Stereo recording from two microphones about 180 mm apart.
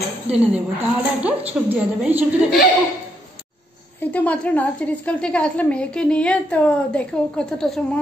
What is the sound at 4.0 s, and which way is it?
A woman's voice, 10° left (ahead or behind).